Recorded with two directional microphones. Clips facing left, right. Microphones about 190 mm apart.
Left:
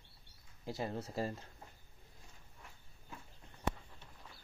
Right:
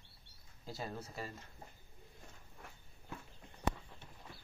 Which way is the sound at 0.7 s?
20° left (ahead or behind).